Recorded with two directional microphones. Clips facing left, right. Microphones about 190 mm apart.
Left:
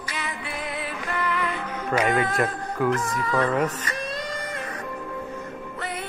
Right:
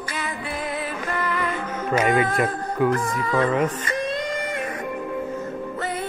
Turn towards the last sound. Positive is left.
turn(degrees=-30)  # may be behind; listen again after turning